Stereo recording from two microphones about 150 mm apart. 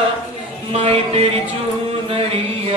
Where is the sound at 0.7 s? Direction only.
40° right (ahead or behind).